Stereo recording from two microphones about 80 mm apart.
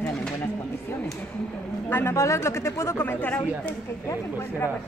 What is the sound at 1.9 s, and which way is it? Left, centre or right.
Speech, left.